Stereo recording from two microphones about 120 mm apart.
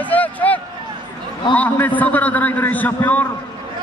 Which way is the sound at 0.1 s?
15° left (ahead or behind).